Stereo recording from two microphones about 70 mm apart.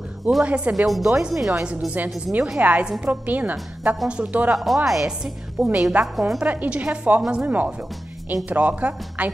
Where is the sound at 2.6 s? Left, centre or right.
Right.